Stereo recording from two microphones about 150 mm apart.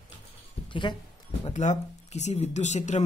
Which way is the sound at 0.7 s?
30° left (ahead or behind).